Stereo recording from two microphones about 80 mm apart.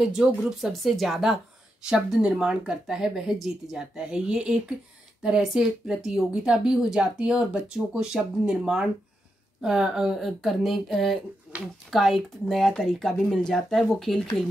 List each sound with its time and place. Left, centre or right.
0.0 s a woman's voice: centre
11.5 s a sound: centre
11.9 s speech: centre